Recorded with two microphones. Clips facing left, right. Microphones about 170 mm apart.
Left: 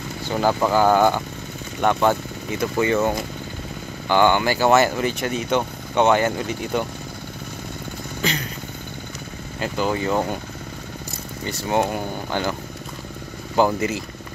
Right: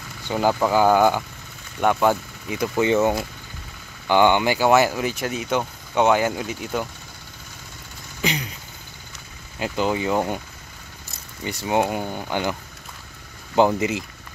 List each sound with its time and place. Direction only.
0.4 s speech: 10° right (ahead or behind)
3.0 s speech: 5° right (ahead or behind)
4.1 s speech: 15° right (ahead or behind)
8.2 s a sound: 15° right (ahead or behind)
9.6 s speech: 15° right (ahead or behind)
11.4 s speech: 15° right (ahead or behind)
13.7 s speech: 15° right (ahead or behind)